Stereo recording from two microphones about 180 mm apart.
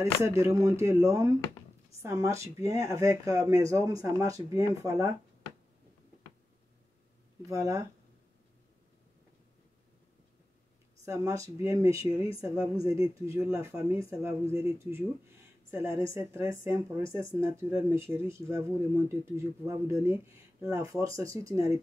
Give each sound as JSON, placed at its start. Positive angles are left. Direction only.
{"t": 0.0, "sound": "speech", "side_deg": -15}
{"t": 7.4, "sound": "speech", "side_deg": -15}
{"t": 11.1, "sound": "speech", "side_deg": -15}